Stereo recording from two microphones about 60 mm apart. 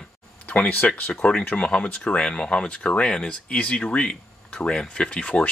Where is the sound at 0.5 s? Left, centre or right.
Left.